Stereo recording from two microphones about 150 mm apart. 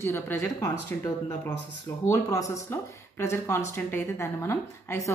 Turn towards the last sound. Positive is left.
turn(degrees=20)  # may be behind; listen again after turning